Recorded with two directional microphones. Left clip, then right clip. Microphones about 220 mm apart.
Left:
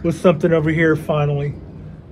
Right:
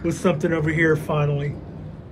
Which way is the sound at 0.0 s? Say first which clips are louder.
Left 6 dB; 10° left (ahead or behind).